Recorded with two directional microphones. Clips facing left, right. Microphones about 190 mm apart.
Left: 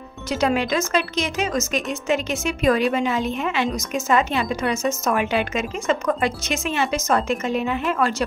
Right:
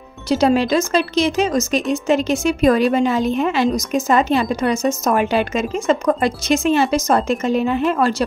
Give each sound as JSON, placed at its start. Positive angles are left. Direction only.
{"t": 0.3, "sound": "speech", "side_deg": -35}